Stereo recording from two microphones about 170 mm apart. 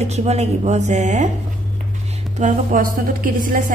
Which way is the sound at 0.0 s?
40° right (ahead or behind).